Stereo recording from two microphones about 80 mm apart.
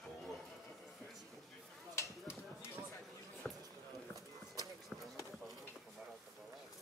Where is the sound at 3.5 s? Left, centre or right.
Centre.